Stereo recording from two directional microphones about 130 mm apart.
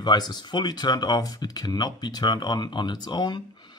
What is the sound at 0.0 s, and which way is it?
Speech, 35° left (ahead or behind).